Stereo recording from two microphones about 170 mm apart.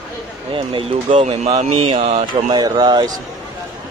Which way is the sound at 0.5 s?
35° right (ahead or behind).